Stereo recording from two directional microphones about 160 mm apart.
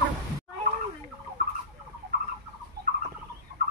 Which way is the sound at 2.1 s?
70° right (ahead or behind).